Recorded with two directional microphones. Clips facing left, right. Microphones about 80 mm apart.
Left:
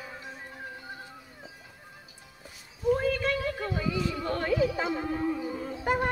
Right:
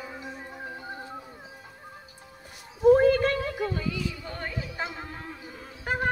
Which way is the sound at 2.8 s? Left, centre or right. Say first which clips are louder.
Right 8 dB; right.